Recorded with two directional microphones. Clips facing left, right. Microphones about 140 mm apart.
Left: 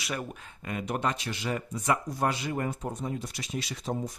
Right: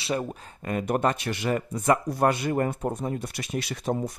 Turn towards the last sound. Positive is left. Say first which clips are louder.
# right 5 dB
turn(degrees=-60)  # may be behind; listen again after turning